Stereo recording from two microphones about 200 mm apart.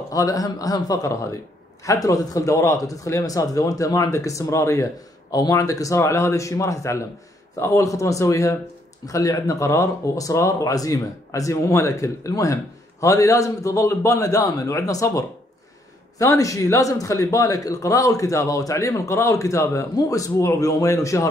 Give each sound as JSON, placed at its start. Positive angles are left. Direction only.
{"t": 0.1, "sound": "speech", "side_deg": 15}